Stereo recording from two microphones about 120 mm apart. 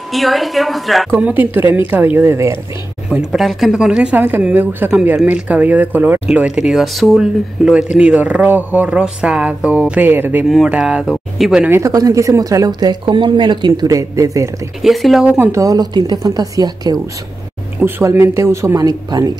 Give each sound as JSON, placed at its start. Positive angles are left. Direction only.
{"t": 0.1, "sound": "speech", "side_deg": 0}
{"t": 1.1, "sound": "speech", "side_deg": -15}
{"t": 3.1, "sound": "speech", "side_deg": -5}
{"t": 6.3, "sound": "speech", "side_deg": -5}
{"t": 10.5, "sound": "speech", "side_deg": -5}
{"t": 11.7, "sound": "speech", "side_deg": -25}
{"t": 13.0, "sound": "speech", "side_deg": -40}
{"t": 14.8, "sound": "speech", "side_deg": 0}
{"t": 15.2, "sound": "speech", "side_deg": -15}
{"t": 17.7, "sound": "speech", "side_deg": -15}